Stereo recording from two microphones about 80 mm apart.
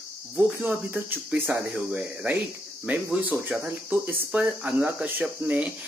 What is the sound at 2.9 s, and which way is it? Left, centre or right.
Speech, centre.